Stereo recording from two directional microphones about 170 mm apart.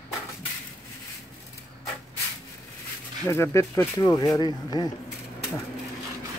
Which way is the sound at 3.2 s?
15° left (ahead or behind).